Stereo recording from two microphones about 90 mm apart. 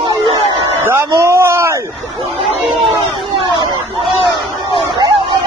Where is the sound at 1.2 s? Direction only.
30° right (ahead or behind).